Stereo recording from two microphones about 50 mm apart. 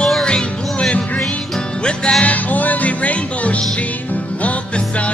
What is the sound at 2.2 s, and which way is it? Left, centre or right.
Music, left.